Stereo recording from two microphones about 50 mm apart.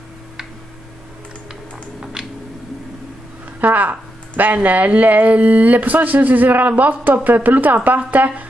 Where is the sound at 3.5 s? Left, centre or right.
Right.